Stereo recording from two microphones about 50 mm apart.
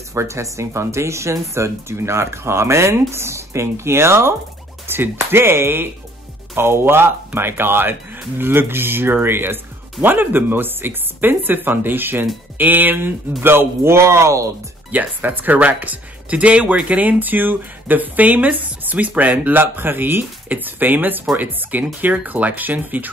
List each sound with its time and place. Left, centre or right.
0.1 s speech: right
4.8 s speech: right
14.9 s speech: right